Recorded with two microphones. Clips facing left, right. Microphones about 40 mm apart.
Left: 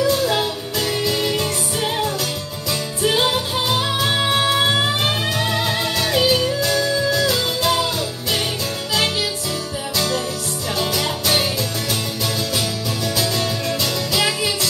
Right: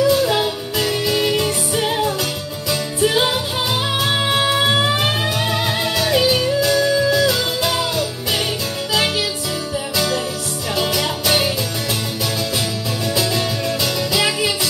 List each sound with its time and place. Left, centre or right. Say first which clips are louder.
0.0 s music: right 3 dB; centre
9.9 s music: right 1 dB; centre
13.1 s music: right 2 dB; right
13.7 s music: right 2 dB; centre